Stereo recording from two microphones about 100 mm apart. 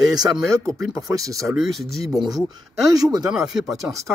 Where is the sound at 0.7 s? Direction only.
35° right (ahead or behind).